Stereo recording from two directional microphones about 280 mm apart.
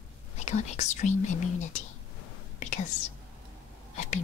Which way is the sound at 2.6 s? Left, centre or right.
Left.